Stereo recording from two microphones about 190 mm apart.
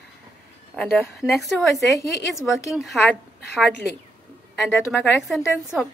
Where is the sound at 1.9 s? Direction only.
15° left (ahead or behind).